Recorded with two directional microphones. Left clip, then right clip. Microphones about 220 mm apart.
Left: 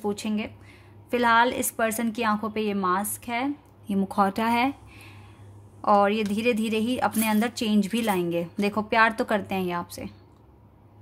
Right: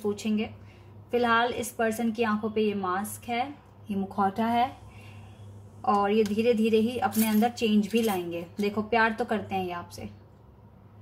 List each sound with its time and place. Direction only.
0.1 s a woman's voice: 50° left (ahead or behind)
5.9 s a woman's voice: 50° left (ahead or behind)